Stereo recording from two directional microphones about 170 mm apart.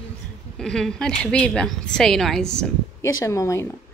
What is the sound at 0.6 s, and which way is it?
A woman's voice, 5° left (ahead or behind).